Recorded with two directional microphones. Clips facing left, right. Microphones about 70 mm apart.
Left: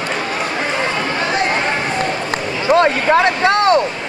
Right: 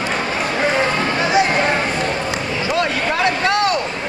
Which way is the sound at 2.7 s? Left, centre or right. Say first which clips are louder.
Left 8 dB; left.